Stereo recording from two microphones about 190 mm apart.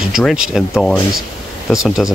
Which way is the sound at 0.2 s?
Centre (ahead or behind).